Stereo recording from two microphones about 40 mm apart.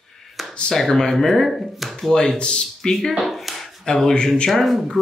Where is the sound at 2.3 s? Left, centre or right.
Left.